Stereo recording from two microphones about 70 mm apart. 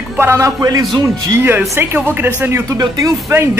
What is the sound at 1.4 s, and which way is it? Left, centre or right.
Speech, right.